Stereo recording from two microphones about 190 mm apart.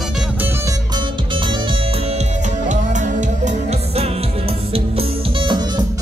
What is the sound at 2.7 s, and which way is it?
Music, 40° right (ahead or behind).